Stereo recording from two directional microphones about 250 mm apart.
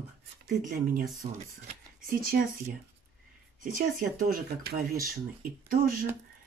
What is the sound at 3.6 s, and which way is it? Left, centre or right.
Speech, right.